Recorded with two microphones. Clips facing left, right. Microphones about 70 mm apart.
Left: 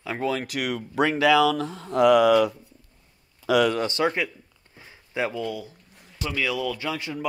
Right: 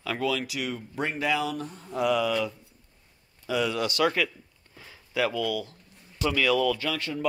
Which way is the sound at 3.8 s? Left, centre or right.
Left.